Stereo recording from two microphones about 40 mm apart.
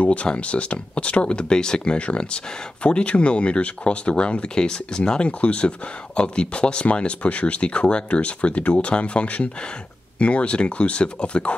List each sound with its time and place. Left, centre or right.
0.0 s speech: left
5.4 s speech: left